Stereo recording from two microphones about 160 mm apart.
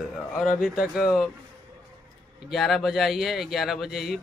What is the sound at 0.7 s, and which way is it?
Speech, 5° right (ahead or behind).